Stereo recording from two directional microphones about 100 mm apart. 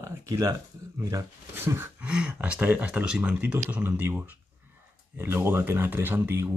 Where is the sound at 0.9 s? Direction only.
25° right (ahead or behind).